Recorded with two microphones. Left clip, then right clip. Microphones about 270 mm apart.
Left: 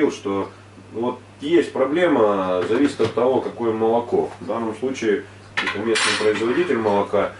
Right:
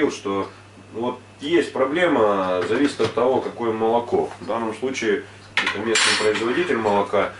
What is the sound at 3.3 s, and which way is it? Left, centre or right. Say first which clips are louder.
Speech: left 1 dB; centre.